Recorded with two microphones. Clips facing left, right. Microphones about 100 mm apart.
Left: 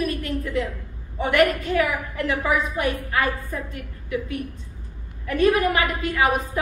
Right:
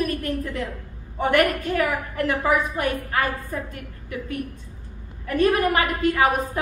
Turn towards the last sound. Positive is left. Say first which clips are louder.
# right 2 dB
turn(degrees=-45)  # may be behind; listen again after turning